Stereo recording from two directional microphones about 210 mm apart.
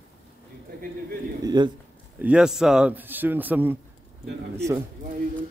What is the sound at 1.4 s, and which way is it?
Speech, 20° right (ahead or behind).